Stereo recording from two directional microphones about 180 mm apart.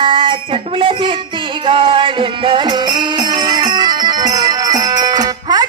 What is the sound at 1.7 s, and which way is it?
Music, 30° right (ahead or behind).